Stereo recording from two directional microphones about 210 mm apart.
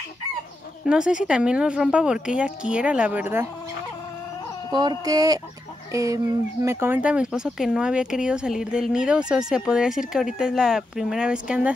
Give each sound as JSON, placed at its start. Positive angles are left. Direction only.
{"t": 0.8, "sound": "speech", "side_deg": -5}
{"t": 4.7, "sound": "speech", "side_deg": -20}